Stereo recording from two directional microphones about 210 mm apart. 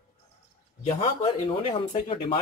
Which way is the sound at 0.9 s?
25° left (ahead or behind).